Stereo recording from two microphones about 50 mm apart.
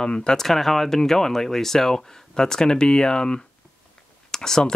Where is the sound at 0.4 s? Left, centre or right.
Centre.